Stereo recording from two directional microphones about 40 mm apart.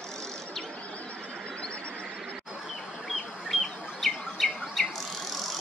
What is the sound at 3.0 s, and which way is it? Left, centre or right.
Bird, centre.